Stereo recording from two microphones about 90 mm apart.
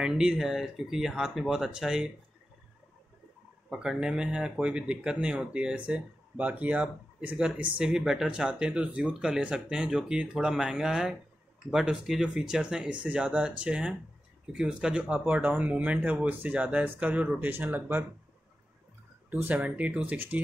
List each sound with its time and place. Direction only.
0.0 s speech: 5° right (ahead or behind)
3.7 s speech: 5° right (ahead or behind); by 18.0 s 20° right (ahead or behind)
19.3 s speech: 20° right (ahead or behind)